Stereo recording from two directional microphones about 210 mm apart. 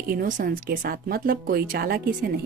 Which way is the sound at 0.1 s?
40° right (ahead or behind).